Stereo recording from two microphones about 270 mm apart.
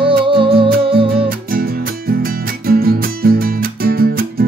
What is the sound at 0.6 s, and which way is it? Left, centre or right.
Music, right.